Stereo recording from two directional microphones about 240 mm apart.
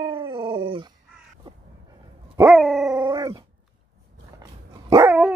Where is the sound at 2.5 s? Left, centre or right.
Centre.